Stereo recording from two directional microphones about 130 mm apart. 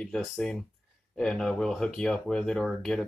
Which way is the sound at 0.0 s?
5° left (ahead or behind).